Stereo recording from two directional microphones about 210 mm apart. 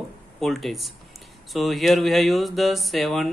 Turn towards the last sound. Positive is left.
turn(degrees=0)  # may be behind; listen again after turning